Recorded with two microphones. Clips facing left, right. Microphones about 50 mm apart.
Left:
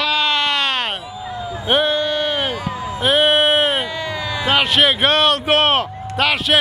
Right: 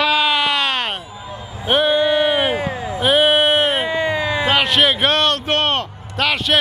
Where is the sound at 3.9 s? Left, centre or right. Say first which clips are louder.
Right 5 dB; right.